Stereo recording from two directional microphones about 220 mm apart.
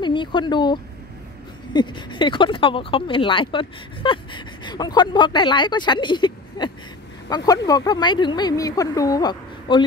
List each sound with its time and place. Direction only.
0.0 s speech: 20° left (ahead or behind)